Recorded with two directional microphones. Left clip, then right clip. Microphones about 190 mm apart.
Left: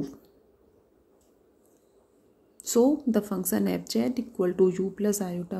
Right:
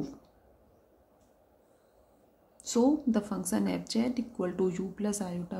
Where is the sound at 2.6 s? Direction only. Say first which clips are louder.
Left 4 dB; 25° left (ahead or behind).